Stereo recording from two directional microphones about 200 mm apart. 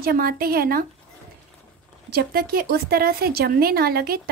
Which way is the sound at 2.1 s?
50° right (ahead or behind).